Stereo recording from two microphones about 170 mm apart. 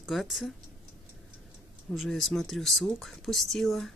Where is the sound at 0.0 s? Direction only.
Centre (ahead or behind).